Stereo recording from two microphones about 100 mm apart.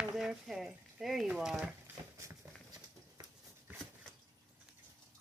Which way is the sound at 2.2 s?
35° right (ahead or behind).